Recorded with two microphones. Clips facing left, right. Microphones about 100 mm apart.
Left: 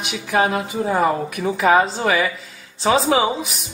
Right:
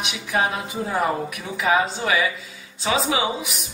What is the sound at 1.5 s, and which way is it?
Speech, 40° left (ahead or behind).